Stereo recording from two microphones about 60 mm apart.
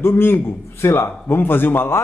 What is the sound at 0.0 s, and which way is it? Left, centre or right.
Speech, left.